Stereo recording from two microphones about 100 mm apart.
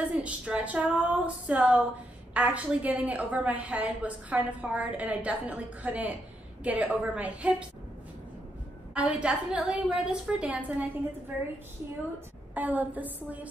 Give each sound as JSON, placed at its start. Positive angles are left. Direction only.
{"t": 0.0, "sound": "a woman's voice", "side_deg": -15}
{"t": 8.9, "sound": "a woman's voice", "side_deg": -10}
{"t": 12.5, "sound": "a woman's voice", "side_deg": -15}